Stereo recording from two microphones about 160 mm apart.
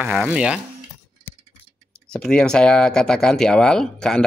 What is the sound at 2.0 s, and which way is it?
Speech, 5° left (ahead or behind).